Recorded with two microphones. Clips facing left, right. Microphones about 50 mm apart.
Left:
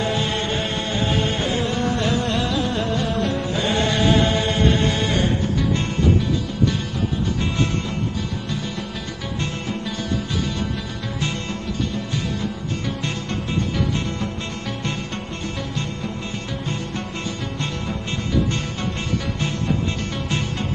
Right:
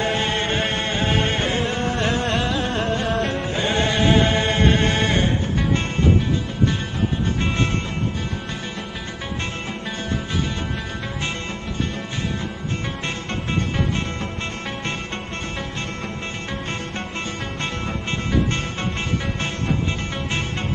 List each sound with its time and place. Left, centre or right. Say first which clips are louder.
0.0 s music: right 1 dB; right
3.4 s chant: even; right
13.0 s music: even; right